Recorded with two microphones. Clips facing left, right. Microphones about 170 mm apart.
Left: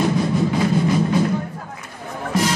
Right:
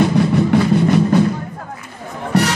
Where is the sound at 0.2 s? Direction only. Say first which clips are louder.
Right 5 dB; 70° right (ahead or behind).